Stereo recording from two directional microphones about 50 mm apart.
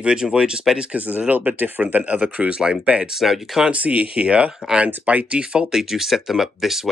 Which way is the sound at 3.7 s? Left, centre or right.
Right.